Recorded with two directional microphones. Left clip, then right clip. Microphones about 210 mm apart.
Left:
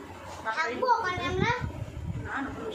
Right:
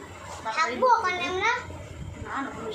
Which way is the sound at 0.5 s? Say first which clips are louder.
Right 5 dB; 20° right (ahead or behind).